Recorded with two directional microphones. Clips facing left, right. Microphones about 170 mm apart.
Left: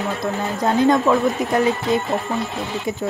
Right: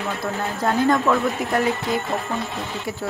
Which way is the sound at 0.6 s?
20° left (ahead or behind).